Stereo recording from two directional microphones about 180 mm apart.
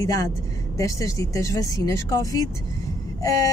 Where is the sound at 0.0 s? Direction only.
20° left (ahead or behind).